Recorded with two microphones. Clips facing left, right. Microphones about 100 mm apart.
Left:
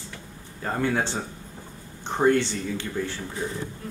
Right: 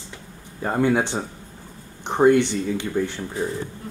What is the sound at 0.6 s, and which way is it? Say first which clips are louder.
Speech: right 5 dB; 15° right (ahead or behind).